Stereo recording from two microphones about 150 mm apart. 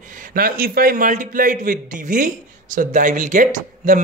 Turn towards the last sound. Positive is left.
turn(degrees=-60)  # may be behind; listen again after turning